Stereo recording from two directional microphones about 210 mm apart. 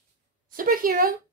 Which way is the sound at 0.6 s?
40° right (ahead or behind).